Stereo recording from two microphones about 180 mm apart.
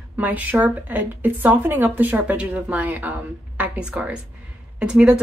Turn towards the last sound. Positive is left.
turn(degrees=-5)  # may be behind; listen again after turning